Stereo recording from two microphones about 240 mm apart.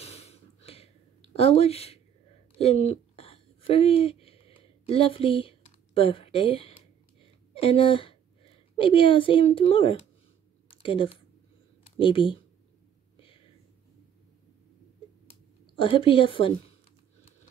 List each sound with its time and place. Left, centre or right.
0.0 s a sound: left
4.8 s a woman's voice: left
15.7 s a woman's voice: left